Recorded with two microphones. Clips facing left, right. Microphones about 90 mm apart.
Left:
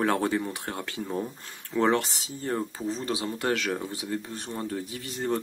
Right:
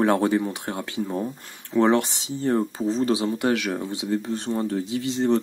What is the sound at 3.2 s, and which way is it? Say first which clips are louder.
Speech: right 5 dB; 20° right (ahead or behind).